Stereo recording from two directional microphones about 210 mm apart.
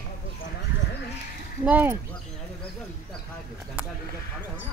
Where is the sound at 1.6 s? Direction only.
10° right (ahead or behind).